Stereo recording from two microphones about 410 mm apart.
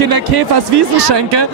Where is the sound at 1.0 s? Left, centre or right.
Right.